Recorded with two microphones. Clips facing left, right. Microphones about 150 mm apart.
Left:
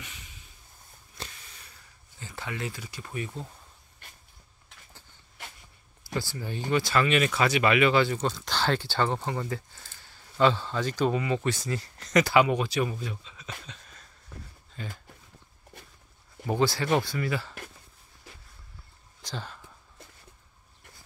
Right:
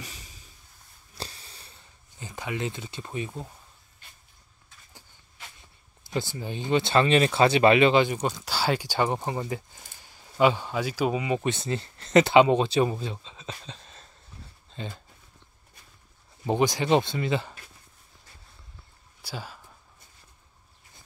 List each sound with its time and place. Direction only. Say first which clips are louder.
0.0 s a sound: right 3 dB; 35° right (ahead or behind)
6.1 s speech: right 2 dB; 20° right (ahead or behind)
14.3 s a sound: left 4 dB; 60° left (ahead or behind)
14.8 s speech: right 3 dB; 25° right (ahead or behind)
16.4 s speech: right 2 dB; 15° right (ahead or behind)
19.2 s speech: even; 10° right (ahead or behind)